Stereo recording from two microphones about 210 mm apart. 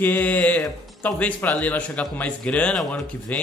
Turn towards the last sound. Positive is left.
turn(degrees=5)  # may be behind; listen again after turning